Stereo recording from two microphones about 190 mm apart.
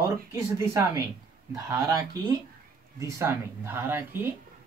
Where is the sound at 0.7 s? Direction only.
20° right (ahead or behind).